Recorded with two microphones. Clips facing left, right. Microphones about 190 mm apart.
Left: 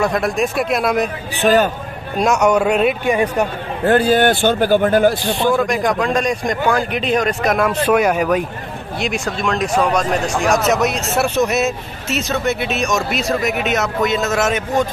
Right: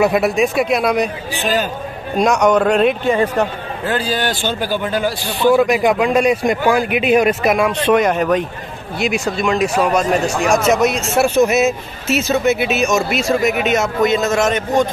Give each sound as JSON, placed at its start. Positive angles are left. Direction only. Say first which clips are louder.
{"t": 0.0, "sound": "speech", "louder": "right 3 dB", "side_deg": -5}
{"t": 1.4, "sound": "a man's voice", "louder": "left 6 dB", "side_deg": 60}
{"t": 2.1, "sound": "a man's voice", "louder": "right 1 dB", "side_deg": 5}
{"t": 3.8, "sound": "a man's voice", "louder": "left 7 dB", "side_deg": 55}
{"t": 5.3, "sound": "a man's voice", "louder": "right 3 dB", "side_deg": -5}
{"t": 7.7, "sound": "a man's voice", "louder": "right 1 dB", "side_deg": 10}